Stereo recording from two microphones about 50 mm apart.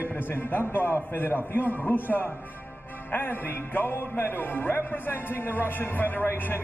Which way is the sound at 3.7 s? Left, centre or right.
Left.